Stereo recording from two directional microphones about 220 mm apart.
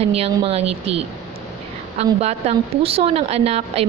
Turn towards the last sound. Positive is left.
turn(degrees=-25)  # may be behind; listen again after turning